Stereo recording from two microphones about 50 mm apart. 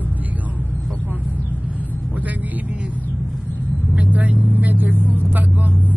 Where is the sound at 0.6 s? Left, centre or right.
Left.